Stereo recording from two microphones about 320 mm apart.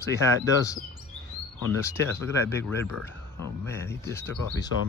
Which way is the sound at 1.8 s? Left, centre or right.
Centre.